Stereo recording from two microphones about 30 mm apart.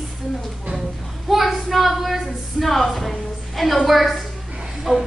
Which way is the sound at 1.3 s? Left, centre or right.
Centre.